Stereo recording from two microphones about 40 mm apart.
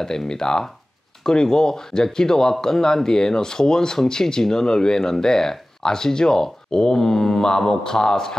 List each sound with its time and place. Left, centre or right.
0.0 s speech: centre